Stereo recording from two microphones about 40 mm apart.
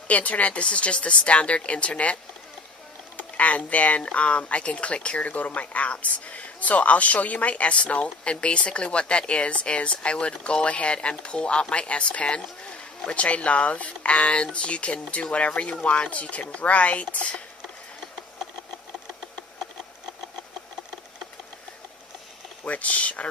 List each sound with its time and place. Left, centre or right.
0.1 s speech: left
3.2 s speech: left
22.7 s speech: left